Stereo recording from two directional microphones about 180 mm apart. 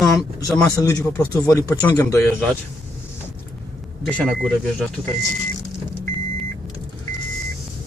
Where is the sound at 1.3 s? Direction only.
20° left (ahead or behind).